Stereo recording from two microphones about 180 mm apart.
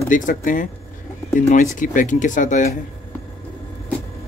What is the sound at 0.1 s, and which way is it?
Speech, 45° left (ahead or behind).